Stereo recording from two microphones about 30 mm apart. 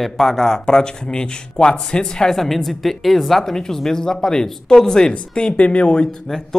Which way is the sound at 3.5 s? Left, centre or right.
Centre.